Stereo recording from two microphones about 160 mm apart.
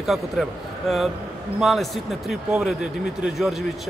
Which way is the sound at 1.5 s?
Centre (ahead or behind).